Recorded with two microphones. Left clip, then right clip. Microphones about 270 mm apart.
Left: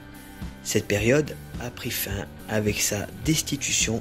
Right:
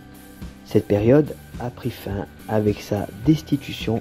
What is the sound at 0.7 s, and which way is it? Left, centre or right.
Speech, centre.